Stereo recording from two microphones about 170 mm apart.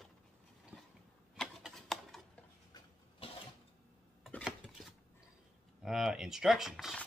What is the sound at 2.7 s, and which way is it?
Pig, 35° left (ahead or behind).